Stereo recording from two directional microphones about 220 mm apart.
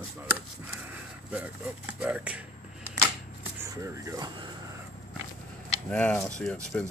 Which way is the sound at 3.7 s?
15° right (ahead or behind).